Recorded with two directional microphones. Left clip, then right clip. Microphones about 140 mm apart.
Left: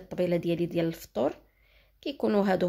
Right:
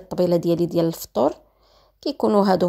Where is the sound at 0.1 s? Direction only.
40° right (ahead or behind).